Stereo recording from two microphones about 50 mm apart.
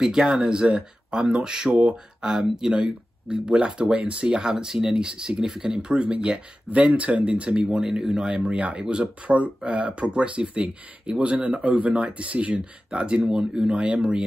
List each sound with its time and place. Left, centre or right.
0.0 s speech: centre
2.7 s speech: right
8.5 s speech: right